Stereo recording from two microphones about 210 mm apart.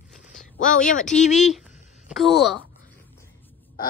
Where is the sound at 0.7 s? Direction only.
35° left (ahead or behind).